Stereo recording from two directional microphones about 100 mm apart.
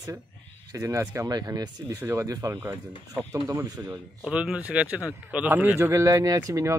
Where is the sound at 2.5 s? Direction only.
20° right (ahead or behind).